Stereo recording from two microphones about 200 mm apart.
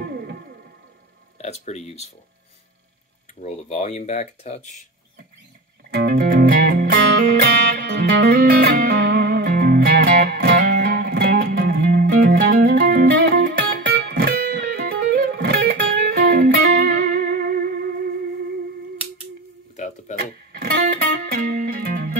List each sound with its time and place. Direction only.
0.0 s music: 55° right (ahead or behind)
1.4 s speech: 35° left (ahead or behind)
3.3 s speech: 35° left (ahead or behind)
5.9 s music: 55° right (ahead or behind)
20.2 s music: 50° right (ahead or behind)